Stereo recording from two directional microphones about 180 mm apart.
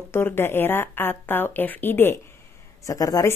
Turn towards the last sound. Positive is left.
turn(degrees=20)  # may be behind; listen again after turning